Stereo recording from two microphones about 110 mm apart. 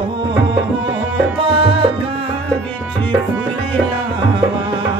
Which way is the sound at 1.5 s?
60° right (ahead or behind).